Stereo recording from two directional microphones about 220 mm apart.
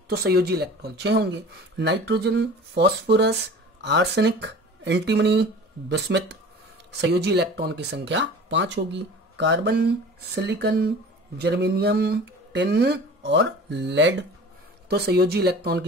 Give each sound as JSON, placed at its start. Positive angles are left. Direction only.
{"t": 0.1, "sound": "speech", "side_deg": -45}